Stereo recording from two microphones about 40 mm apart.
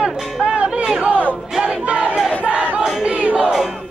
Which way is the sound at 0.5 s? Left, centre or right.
Right.